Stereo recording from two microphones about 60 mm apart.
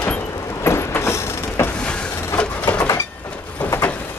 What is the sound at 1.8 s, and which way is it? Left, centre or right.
Vehicle, centre.